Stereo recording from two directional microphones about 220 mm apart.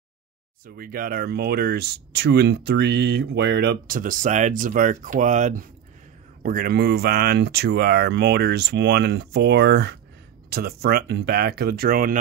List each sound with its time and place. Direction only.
0.7 s speech: 40° right (ahead or behind)